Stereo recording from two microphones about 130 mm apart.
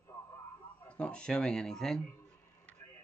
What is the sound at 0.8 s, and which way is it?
Speech, 10° left (ahead or behind).